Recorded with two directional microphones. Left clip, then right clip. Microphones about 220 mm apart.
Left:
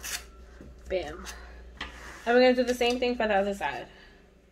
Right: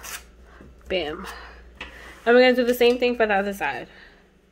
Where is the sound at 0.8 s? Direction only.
50° right (ahead or behind).